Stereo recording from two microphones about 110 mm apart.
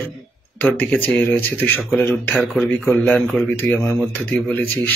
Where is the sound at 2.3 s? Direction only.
15° left (ahead or behind).